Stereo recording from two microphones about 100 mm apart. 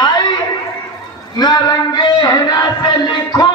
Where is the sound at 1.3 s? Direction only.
40° left (ahead or behind).